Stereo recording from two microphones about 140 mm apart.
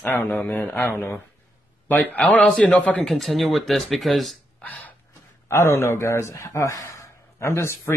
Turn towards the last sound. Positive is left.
turn(degrees=20)  # may be behind; listen again after turning